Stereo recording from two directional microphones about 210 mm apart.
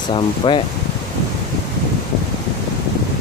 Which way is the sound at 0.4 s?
25° left (ahead or behind).